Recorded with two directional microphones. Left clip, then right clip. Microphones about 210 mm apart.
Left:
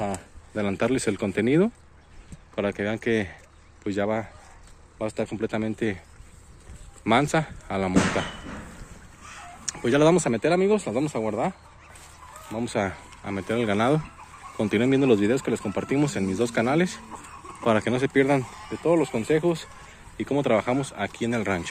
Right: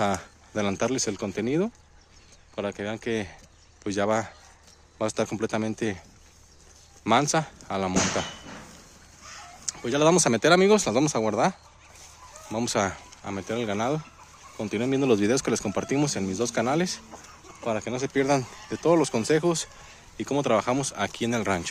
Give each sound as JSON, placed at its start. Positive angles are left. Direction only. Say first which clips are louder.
{"t": 0.6, "sound": "speech", "louder": "left 1 dB", "side_deg": -10}
{"t": 3.8, "sound": "speech", "louder": "right 1 dB", "side_deg": -15}
{"t": 4.9, "sound": "speech", "louder": "right 2 dB", "side_deg": -30}
{"t": 7.1, "sound": "speech", "louder": "left 1 dB", "side_deg": -10}
{"t": 9.7, "sound": "speech", "louder": "left 2 dB", "side_deg": 0}
{"t": 10.1, "sound": "speech", "louder": "right 2 dB", "side_deg": -20}
{"t": 12.6, "sound": "speech", "louder": "right 1 dB", "side_deg": -15}
{"t": 17.6, "sound": "speech", "louder": "left 6 dB", "side_deg": 10}
{"t": 18.8, "sound": "speech", "louder": "right 1 dB", "side_deg": -30}
{"t": 20.2, "sound": "speech", "louder": "left 1 dB", "side_deg": -15}